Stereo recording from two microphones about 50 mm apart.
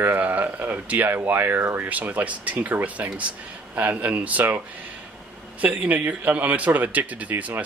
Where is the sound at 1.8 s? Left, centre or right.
Right.